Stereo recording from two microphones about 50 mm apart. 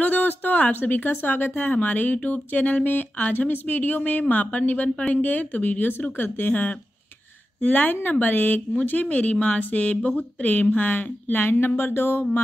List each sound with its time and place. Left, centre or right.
0.0 s a sound: left
1.2 s speech: left
9.0 s speech: left